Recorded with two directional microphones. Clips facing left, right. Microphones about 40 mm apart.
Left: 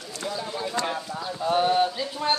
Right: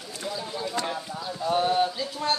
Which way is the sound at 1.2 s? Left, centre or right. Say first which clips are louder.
Left 2 dB; left.